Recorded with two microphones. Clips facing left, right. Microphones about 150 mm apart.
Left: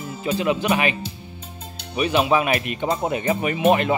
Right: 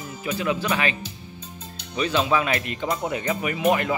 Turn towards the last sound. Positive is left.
turn(degrees=25)  # may be behind; listen again after turning